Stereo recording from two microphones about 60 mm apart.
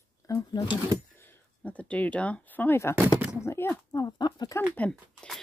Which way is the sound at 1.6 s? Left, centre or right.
Left.